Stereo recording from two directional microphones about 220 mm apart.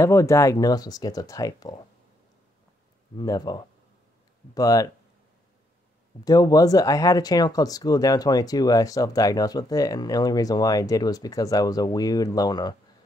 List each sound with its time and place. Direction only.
0.0 s speech: 15° left (ahead or behind)
3.2 s speech: 20° left (ahead or behind)
6.2 s speech: 15° left (ahead or behind)